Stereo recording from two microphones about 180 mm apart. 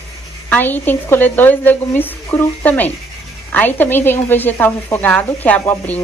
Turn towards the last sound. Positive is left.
turn(degrees=10)  # may be behind; listen again after turning